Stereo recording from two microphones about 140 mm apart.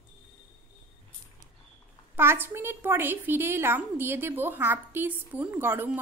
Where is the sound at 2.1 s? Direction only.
15° right (ahead or behind).